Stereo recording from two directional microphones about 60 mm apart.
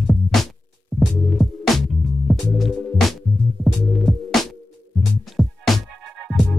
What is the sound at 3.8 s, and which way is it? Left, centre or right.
Music, centre.